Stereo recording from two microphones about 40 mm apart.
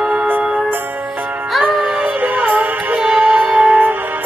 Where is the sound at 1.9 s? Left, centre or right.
Right.